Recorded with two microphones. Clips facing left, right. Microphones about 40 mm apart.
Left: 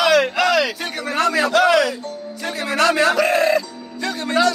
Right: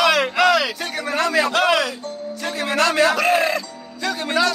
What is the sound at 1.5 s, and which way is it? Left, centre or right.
Music, centre.